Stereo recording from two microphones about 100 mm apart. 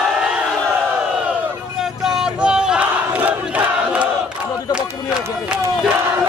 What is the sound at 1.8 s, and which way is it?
Battle cry, 5° right (ahead or behind).